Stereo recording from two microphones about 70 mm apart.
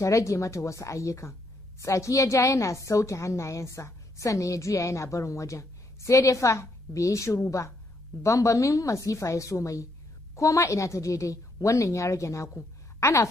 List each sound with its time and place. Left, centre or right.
0.0 s a woman's voice: left